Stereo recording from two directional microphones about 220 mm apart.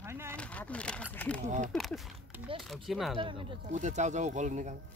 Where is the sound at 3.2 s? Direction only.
25° right (ahead or behind).